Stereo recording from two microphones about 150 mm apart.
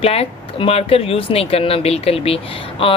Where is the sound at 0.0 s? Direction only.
40° left (ahead or behind).